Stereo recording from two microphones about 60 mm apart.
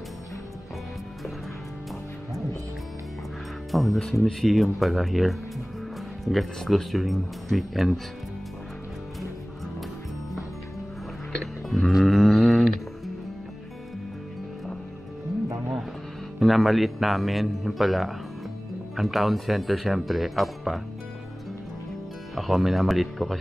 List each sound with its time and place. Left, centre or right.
3.7 s speech: centre
11.7 s music: centre
16.3 s speech: centre
22.3 s speech: centre